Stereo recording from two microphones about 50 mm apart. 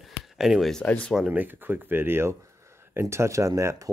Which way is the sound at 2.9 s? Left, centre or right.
Right.